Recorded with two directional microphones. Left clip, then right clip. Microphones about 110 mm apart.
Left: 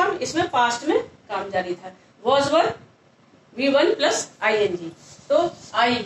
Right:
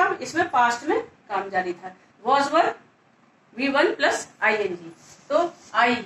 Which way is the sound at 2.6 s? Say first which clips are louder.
Left 1 dB; 40° left (ahead or behind).